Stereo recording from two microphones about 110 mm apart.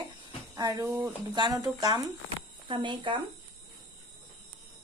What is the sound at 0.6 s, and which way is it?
Speech, 35° right (ahead or behind).